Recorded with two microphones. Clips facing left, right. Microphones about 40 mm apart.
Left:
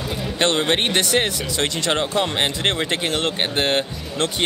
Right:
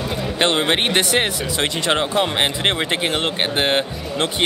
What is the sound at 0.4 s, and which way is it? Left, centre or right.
Speech, right.